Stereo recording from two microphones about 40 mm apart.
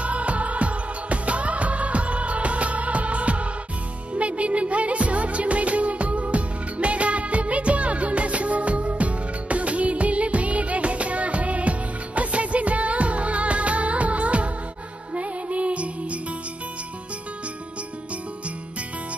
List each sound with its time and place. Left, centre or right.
0.0 s music: right